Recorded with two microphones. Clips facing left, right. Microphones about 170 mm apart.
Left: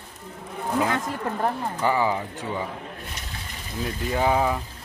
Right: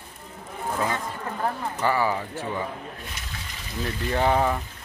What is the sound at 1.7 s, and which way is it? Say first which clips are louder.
Speech: even; 15° left (ahead or behind).